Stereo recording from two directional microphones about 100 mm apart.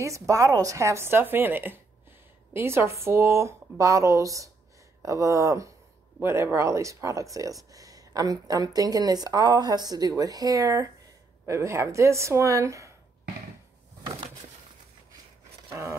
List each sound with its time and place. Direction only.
0.0 s speech: 30° right (ahead or behind)